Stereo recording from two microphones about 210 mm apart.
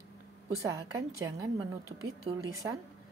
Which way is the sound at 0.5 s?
15° right (ahead or behind).